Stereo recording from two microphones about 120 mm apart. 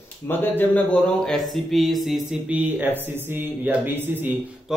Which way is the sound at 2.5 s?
15° right (ahead or behind).